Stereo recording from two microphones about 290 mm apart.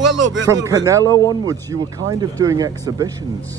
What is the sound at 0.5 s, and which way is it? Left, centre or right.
Speech, centre.